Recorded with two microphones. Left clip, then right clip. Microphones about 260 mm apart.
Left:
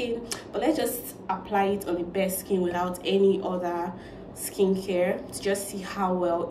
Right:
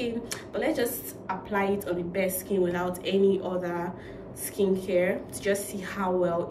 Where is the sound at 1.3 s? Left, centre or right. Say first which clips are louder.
Left 3 dB; right.